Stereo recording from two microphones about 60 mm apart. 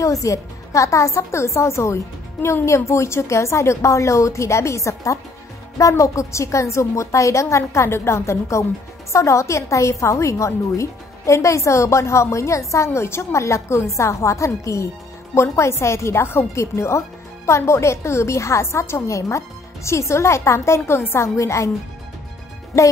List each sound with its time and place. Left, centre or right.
0.0 s a woman's voice: left
21.4 s a woman's voice: left
22.7 s a woman's voice: left